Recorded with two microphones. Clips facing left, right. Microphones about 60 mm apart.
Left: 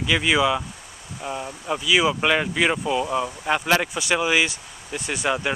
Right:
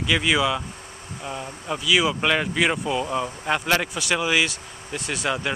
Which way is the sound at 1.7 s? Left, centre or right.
Centre.